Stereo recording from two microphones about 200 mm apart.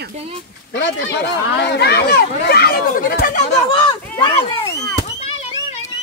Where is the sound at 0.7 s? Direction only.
55° left (ahead or behind).